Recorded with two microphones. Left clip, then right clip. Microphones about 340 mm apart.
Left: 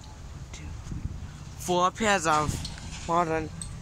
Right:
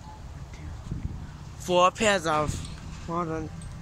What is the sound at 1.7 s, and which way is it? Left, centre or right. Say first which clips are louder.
Speech: right 3 dB; centre.